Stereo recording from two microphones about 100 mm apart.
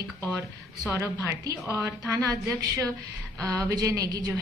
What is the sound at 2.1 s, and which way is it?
A woman's voice, 35° right (ahead or behind).